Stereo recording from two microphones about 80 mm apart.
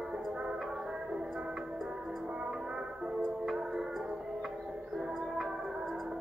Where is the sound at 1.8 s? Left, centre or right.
Centre.